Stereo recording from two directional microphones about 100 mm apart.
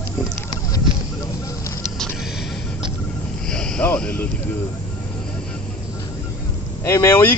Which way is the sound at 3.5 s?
5° left (ahead or behind).